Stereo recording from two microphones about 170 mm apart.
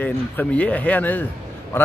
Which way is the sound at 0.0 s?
10° left (ahead or behind).